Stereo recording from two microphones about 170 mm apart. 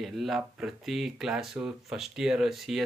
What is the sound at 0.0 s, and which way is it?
Speech, centre (ahead or behind).